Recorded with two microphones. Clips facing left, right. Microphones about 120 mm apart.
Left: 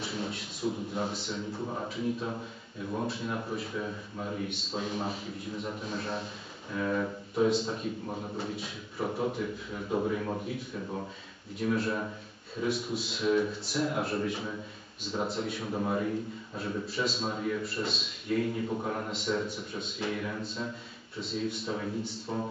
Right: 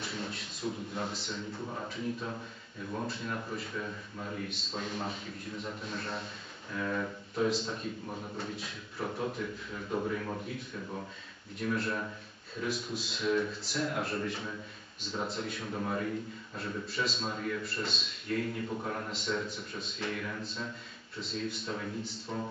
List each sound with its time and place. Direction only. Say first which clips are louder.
0.0 s a sound: left 4 dB; 5° left (ahead or behind)
2.9 s a man's voice: left 3 dB; 10° left (ahead or behind)
6.7 s speech: left 4 dB; 15° left (ahead or behind)
7.4 s a man's voice: left 4 dB; 5° left (ahead or behind)
11.6 s a man's voice: left 3 dB; 5° left (ahead or behind)
15.6 s a man's voice: left 4 dB; 15° left (ahead or behind)
19.0 s a man's voice: left 3 dB; 5° left (ahead or behind)